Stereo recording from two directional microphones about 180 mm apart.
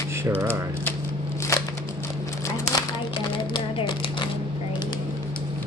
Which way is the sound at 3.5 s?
25° left (ahead or behind).